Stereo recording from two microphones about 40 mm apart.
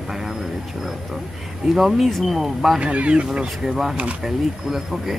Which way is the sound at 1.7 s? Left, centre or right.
Centre.